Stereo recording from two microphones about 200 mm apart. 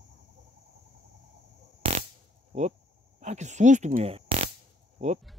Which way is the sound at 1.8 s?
30° right (ahead or behind).